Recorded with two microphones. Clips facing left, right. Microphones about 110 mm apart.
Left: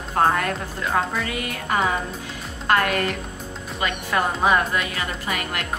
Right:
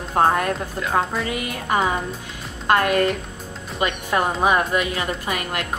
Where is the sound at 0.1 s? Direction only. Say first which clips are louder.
Right 2 dB; 20° right (ahead or behind).